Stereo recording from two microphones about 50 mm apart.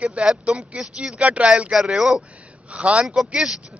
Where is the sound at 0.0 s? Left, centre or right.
Right.